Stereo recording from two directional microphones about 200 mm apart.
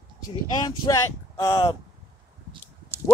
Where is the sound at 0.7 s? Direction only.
20° left (ahead or behind).